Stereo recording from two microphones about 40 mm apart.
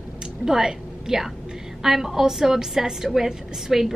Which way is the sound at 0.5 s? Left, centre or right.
Centre.